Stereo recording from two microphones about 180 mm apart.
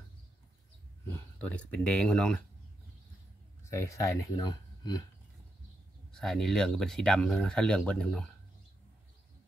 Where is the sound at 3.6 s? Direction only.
15° left (ahead or behind).